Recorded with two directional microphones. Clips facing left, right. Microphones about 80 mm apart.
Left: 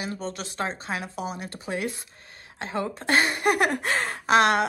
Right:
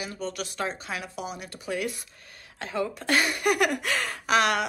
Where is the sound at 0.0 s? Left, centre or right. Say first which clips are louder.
Left 1 dB; left.